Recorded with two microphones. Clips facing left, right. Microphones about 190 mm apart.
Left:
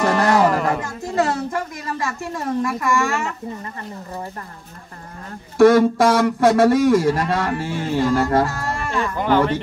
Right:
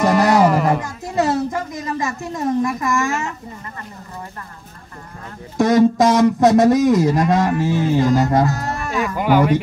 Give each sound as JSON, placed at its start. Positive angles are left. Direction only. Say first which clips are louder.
{"t": 0.0, "sound": "music", "louder": "right 3 dB", "side_deg": -15}
{"t": 0.4, "sound": "music", "louder": "right 3 dB", "side_deg": -5}
{"t": 1.1, "sound": "speech", "louder": "right 2 dB", "side_deg": -20}
{"t": 5.6, "sound": "speech", "louder": "left 1 dB", "side_deg": -20}